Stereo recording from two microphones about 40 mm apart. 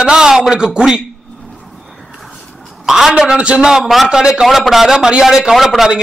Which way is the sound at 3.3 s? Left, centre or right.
Right.